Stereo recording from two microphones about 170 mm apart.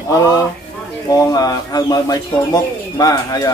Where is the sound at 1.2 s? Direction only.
20° left (ahead or behind).